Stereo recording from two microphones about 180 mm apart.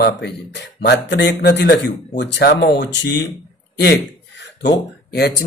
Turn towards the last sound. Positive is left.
turn(degrees=65)  # may be behind; listen again after turning